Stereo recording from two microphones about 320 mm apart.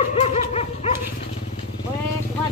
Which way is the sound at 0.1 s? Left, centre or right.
Centre.